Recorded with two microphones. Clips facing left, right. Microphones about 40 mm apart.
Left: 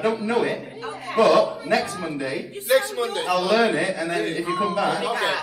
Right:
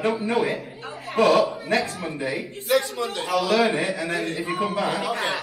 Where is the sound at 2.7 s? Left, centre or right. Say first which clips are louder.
Left 2 dB; centre.